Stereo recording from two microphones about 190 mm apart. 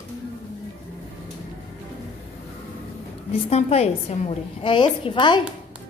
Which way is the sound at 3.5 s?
35° left (ahead or behind).